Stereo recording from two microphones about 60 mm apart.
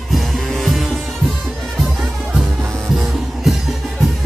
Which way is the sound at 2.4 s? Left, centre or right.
Centre.